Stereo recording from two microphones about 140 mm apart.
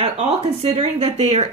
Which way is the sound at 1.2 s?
50° right (ahead or behind).